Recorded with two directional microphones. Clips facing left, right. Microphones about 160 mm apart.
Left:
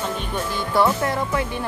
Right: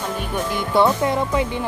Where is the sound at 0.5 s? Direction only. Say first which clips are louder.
Right 2 dB; 20° right (ahead or behind).